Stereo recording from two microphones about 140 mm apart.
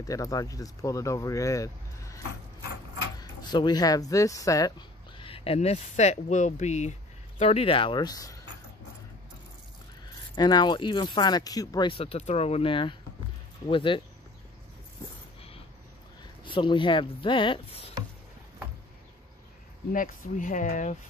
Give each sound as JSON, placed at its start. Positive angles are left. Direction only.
{"t": 0.0, "sound": "speech", "side_deg": 25}
{"t": 10.0, "sound": "speech", "side_deg": 30}
{"t": 12.0, "sound": "speech", "side_deg": 45}
{"t": 16.4, "sound": "speech", "side_deg": 35}
{"t": 19.9, "sound": "speech", "side_deg": 70}